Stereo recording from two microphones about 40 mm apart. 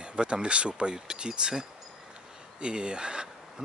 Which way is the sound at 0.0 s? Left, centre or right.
Right.